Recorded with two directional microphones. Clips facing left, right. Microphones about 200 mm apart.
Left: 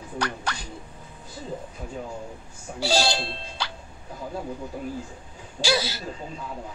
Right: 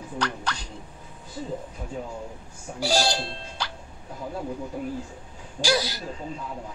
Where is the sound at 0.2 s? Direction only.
5° left (ahead or behind).